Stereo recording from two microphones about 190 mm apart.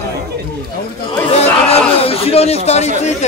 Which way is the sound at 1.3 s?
35° left (ahead or behind).